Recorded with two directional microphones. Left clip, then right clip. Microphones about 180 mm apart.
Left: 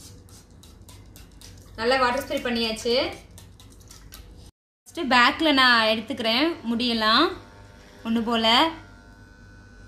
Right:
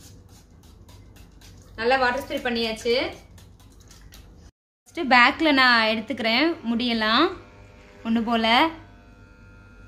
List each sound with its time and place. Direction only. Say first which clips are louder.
1.8 s a woman's voice: right 1 dB; 15° right (ahead or behind)
4.9 s a woman's voice: right 2 dB; 20° right (ahead or behind)